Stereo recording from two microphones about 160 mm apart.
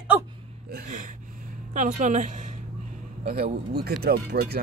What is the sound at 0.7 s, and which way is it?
Speech, 60° right (ahead or behind).